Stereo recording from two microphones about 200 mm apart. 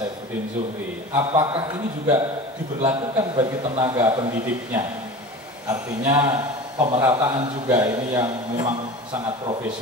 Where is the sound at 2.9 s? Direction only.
15° right (ahead or behind).